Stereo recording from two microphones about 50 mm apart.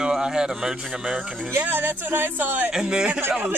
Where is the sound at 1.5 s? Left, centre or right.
Right.